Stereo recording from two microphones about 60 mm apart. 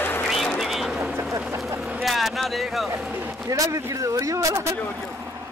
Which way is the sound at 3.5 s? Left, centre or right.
Right.